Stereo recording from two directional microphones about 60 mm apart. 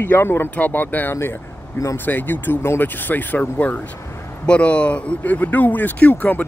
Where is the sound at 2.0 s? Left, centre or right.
Left.